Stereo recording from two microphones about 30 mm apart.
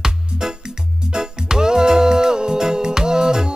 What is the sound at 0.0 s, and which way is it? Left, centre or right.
Music, right.